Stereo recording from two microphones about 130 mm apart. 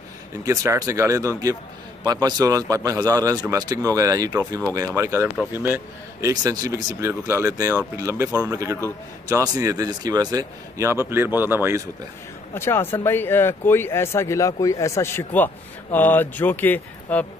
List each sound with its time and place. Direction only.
0.5 s a man's voice: 25° right (ahead or behind)
6.2 s a man's voice: 30° right (ahead or behind)
12.5 s speech: 20° left (ahead or behind)